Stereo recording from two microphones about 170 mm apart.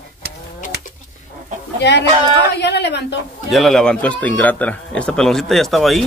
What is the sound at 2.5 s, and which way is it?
Speech, 80° left.